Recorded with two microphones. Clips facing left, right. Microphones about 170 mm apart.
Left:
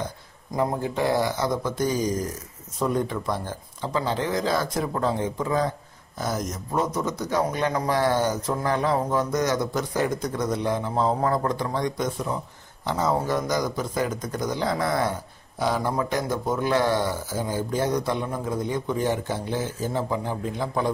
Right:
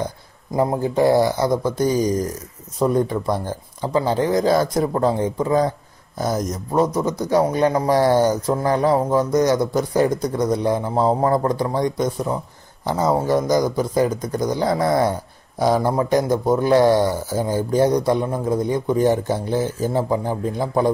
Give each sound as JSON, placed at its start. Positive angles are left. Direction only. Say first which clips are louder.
{"t": 0.6, "sound": "a man's voice", "louder": "right 6 dB", "side_deg": -35}